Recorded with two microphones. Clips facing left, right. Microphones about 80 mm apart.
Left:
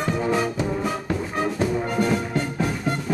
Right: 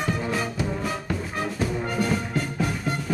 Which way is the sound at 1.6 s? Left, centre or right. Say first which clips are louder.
Left 3 dB; centre.